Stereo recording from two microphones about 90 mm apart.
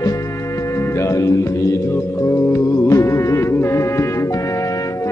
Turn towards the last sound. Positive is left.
turn(degrees=35)  # may be behind; listen again after turning